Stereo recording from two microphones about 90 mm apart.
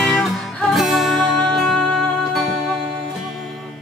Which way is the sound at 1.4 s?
10° left (ahead or behind).